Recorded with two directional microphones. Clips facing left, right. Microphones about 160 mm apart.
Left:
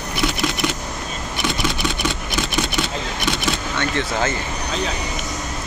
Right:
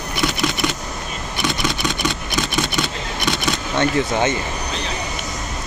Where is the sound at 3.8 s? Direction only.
20° right (ahead or behind).